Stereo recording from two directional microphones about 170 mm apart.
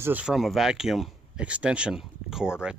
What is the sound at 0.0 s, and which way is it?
Speech, 10° right (ahead or behind).